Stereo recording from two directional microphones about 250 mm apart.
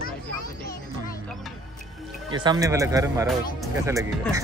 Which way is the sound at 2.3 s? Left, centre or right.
Centre.